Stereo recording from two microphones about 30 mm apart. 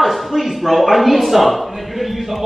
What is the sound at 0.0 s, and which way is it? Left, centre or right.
A man's voice, centre.